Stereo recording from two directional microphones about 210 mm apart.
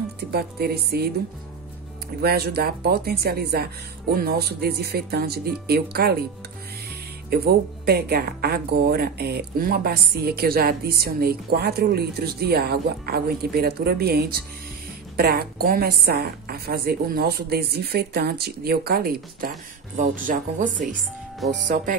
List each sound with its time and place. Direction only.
0.3 s speech: 50° right (ahead or behind)
2.2 s speech: 45° right (ahead or behind)
7.2 s speech: 50° right (ahead or behind)